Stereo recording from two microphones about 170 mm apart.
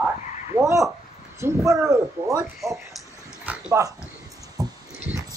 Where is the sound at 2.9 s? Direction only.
Centre (ahead or behind).